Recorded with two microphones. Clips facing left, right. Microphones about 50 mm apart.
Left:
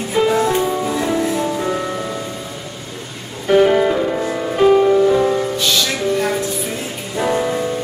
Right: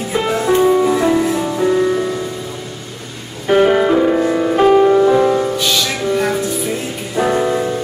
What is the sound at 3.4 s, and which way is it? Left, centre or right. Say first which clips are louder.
Music: right 1 dB; centre.